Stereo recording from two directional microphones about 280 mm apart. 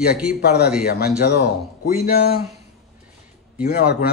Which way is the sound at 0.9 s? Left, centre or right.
Left.